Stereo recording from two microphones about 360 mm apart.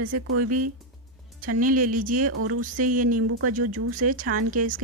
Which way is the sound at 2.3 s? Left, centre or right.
Right.